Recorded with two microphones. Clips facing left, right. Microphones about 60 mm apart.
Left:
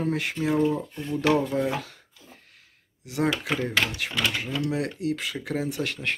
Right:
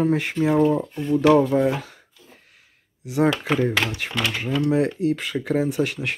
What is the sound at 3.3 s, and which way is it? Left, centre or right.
Speech, right.